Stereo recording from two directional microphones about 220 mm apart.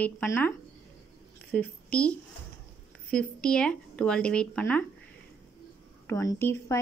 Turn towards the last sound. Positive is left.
turn(degrees=10)  # may be behind; listen again after turning